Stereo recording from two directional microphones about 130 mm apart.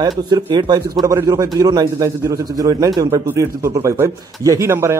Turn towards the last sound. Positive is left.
turn(degrees=-20)  # may be behind; listen again after turning